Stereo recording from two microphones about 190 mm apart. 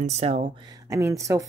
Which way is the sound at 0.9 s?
15° right (ahead or behind).